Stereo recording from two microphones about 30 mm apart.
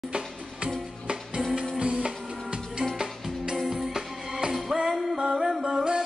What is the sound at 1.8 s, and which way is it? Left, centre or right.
Music, right.